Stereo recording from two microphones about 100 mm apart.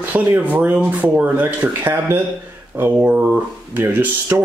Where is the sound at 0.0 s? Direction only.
20° right (ahead or behind).